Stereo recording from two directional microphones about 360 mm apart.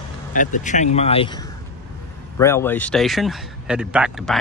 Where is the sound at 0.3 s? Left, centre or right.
Left.